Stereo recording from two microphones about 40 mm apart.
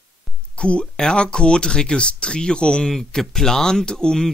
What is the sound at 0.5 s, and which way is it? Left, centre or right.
Speech, left.